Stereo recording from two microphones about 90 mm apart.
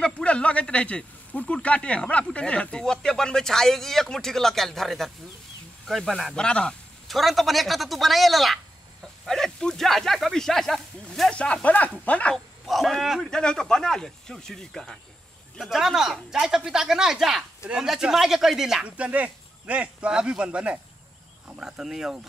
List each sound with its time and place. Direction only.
0.0 s a man's voice: 15° left (ahead or behind)
12.6 s a man's voice: centre (ahead or behind)